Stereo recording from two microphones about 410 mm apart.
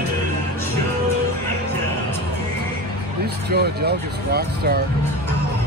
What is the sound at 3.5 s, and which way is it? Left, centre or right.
Speech, right.